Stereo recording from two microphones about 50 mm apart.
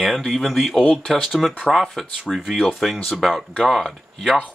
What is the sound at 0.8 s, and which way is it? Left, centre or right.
Speech, centre.